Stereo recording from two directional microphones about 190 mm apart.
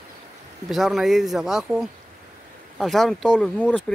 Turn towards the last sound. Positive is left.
turn(degrees=5)  # may be behind; listen again after turning